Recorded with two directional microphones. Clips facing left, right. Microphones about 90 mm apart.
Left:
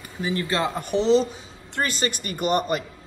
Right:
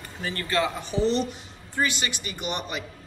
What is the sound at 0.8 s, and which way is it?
Speech, 60° left (ahead or behind).